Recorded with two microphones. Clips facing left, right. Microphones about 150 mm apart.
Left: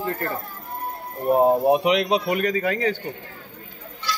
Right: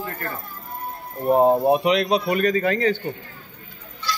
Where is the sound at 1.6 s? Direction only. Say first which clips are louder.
Even; 15° left (ahead or behind).